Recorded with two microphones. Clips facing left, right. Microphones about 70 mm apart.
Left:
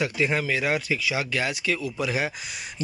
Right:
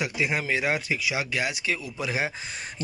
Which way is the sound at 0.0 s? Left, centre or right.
Centre.